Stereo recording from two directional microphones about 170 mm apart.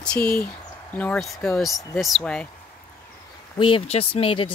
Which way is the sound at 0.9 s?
5° left (ahead or behind).